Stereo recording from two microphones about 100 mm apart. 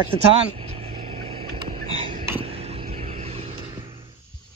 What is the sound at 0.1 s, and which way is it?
Vehicle, 90° right.